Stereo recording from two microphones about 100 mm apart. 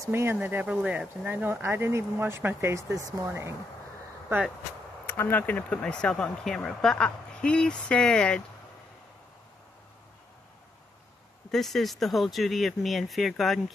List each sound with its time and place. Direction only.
0.0 s speech: 25° right (ahead or behind)
5.0 s speech: 20° left (ahead or behind)
11.5 s speech: centre (ahead or behind)